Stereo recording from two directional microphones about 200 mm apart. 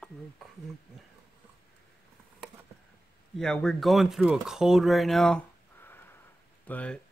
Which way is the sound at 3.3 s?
5° left (ahead or behind).